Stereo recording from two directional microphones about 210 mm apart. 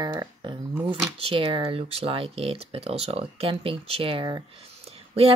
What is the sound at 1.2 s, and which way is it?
Speech, 25° right (ahead or behind).